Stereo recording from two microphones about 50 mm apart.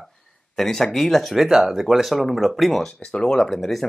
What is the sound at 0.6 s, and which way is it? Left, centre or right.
Speech, centre.